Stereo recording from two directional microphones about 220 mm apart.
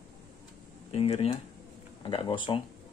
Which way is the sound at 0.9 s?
25° left (ahead or behind).